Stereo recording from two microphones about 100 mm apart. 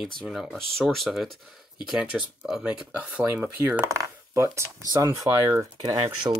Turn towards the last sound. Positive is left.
turn(degrees=-40)  # may be behind; listen again after turning